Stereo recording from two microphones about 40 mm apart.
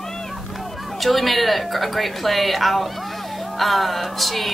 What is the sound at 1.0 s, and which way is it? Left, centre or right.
Speech, centre.